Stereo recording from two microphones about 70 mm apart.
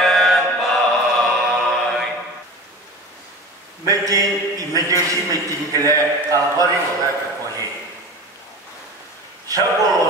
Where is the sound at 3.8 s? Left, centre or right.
Right.